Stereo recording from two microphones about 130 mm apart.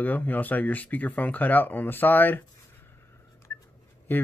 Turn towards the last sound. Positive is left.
turn(degrees=15)  # may be behind; listen again after turning